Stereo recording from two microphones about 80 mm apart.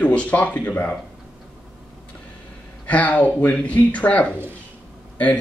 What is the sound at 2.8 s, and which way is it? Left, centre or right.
A man's voice, centre.